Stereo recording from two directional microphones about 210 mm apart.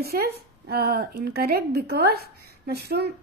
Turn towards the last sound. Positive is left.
turn(degrees=-50)  # may be behind; listen again after turning